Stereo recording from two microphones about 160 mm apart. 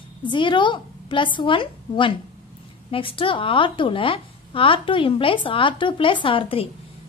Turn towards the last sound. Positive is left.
turn(degrees=35)  # may be behind; listen again after turning